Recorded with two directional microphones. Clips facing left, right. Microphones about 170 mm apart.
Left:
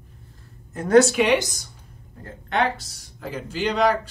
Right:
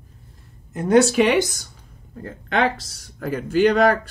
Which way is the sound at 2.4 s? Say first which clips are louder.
Right 2 dB; 90° right.